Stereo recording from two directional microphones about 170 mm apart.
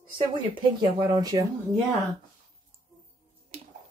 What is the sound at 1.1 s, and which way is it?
Speech, 20° right (ahead or behind).